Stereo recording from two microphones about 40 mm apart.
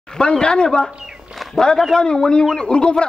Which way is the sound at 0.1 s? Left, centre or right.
Left.